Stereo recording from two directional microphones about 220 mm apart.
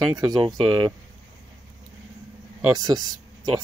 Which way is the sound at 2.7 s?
15° right (ahead or behind).